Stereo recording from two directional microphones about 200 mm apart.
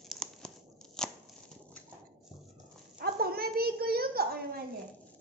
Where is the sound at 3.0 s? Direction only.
50° right (ahead or behind).